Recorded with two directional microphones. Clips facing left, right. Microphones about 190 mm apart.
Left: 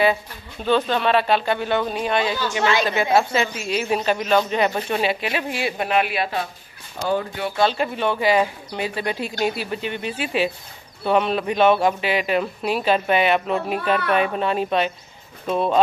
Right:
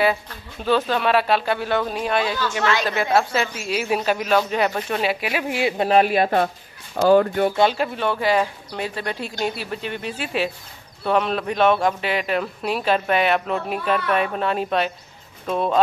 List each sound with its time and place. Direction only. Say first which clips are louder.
0.7 s speech: even; 5° right (ahead or behind)
5.5 s speech: right 3 dB; 20° right (ahead or behind)
5.9 s speech: right 6 dB; 40° right (ahead or behind)
7.0 s speech: right 8 dB; 75° right (ahead or behind)
7.7 s speech: left 1 dB; centre (ahead or behind)